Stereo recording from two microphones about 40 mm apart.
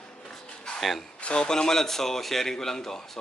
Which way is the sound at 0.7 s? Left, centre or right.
Centre.